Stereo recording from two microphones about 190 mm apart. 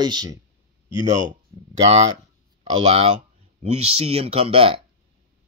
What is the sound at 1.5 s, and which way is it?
Speech, 20° right (ahead or behind).